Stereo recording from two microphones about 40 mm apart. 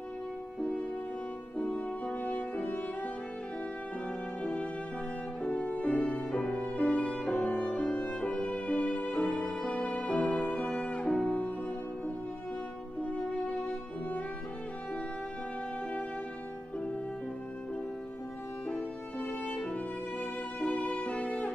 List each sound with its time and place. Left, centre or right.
1.6 s french horn: left
2.6 s music: left
4.4 s music: left
9.6 s violin: left
13.0 s music: left
18.7 s music: left